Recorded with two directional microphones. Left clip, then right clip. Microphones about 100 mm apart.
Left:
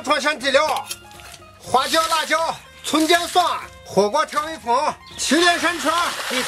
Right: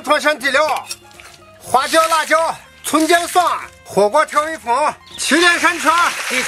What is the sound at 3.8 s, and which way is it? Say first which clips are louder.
Speech: right 5 dB; 30° right (ahead or behind).